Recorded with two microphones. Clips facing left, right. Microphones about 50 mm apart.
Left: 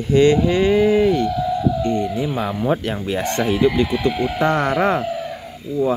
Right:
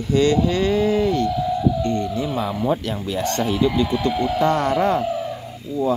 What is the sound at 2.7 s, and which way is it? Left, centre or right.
Speech, left.